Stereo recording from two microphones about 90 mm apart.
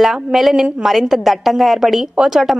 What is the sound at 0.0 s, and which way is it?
A woman's voice, 5° right (ahead or behind).